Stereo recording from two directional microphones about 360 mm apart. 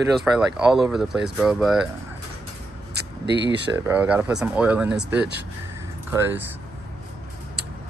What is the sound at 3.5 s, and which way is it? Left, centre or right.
Speech, right.